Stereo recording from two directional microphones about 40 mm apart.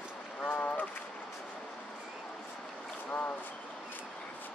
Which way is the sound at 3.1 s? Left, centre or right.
Left.